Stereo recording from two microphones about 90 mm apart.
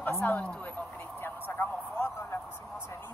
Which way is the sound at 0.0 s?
25° left (ahead or behind).